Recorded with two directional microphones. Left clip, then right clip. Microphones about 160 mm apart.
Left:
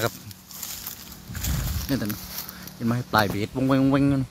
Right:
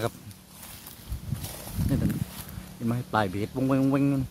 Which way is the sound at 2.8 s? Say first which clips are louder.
Left 5 dB; 20° left (ahead or behind).